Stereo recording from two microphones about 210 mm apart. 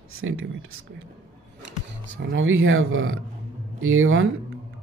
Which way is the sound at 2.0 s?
65° right (ahead or behind).